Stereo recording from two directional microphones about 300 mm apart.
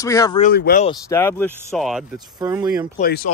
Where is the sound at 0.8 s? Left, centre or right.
Centre.